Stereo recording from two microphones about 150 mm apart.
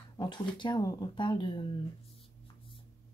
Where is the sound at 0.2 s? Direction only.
30° left (ahead or behind).